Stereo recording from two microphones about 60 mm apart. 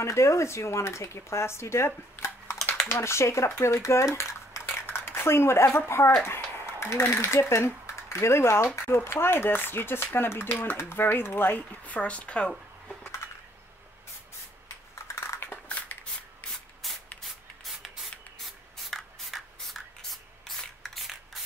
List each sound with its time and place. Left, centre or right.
0.0 s speech: left
2.2 s typing: left
2.9 s speech: left
4.8 s speech: left
15.1 s a sound: left
15.5 s shuffling cards: left
16.8 s spray: centre
17.2 s rub: centre
18.4 s spray: centre